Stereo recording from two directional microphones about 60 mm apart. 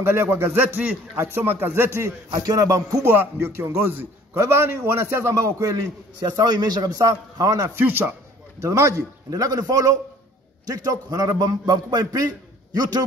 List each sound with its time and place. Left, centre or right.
0.0 s a man's voice: right
1.2 s a man's voice: right
2.0 s a man's voice: right
3.0 s a man's voice: right
4.4 s a man's voice: right
6.2 s a man's voice: right
7.8 s a man's voice: right
8.5 s a man's voice: right
10.6 s a man's voice: right